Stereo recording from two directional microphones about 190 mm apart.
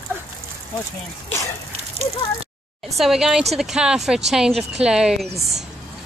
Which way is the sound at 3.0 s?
Centre (ahead or behind).